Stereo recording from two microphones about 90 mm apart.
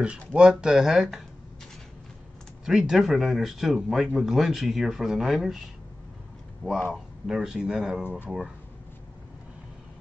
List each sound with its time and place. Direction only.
0.3 s speech: 10° right (ahead or behind)
2.6 s speech: 5° right (ahead or behind)
6.9 s speech: 5° right (ahead or behind)